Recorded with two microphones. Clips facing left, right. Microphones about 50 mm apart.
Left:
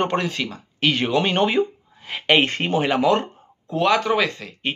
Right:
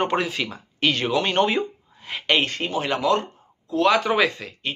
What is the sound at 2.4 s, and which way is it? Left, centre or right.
Speech, left.